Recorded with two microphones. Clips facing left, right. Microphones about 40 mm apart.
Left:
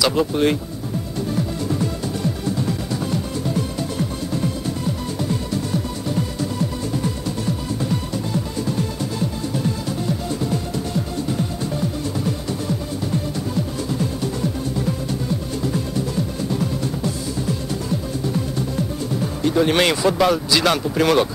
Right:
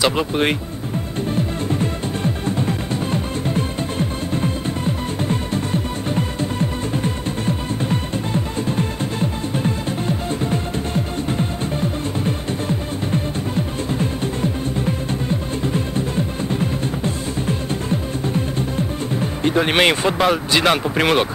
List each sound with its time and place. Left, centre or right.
0.0 s speech: right
1.3 s music: right